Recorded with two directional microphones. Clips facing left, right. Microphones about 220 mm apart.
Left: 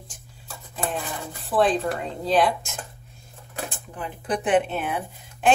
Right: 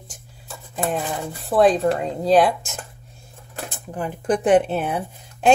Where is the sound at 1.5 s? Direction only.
40° right (ahead or behind).